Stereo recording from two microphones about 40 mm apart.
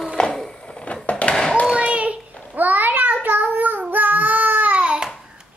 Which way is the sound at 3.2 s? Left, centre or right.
Right.